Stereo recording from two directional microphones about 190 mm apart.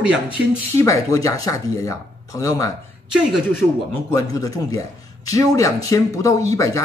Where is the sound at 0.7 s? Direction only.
15° left (ahead or behind).